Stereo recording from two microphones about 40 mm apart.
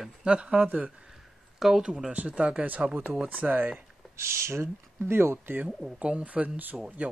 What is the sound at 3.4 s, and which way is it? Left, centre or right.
Speech, right.